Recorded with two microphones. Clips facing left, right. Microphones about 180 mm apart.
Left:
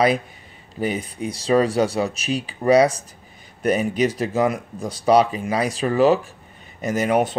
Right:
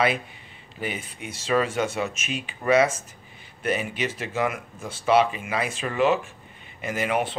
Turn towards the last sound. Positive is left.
turn(degrees=40)  # may be behind; listen again after turning